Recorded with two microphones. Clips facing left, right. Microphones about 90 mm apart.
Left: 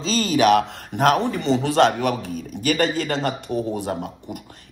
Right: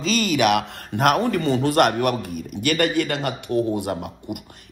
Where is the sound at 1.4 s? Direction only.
20° left (ahead or behind).